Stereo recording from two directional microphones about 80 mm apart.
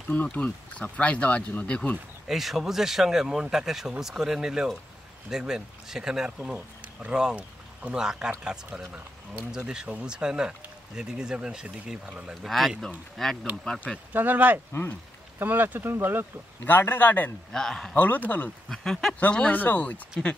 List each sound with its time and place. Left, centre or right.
0.1 s speech: centre
2.2 s speech: centre
12.4 s speech: centre
14.1 s speech: right
16.6 s speech: left
17.5 s speech: centre
17.9 s speech: left
18.7 s speech: centre
19.3 s speech: centre